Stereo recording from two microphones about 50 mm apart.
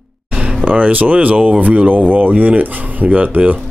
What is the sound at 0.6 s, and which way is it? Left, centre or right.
Speech, right.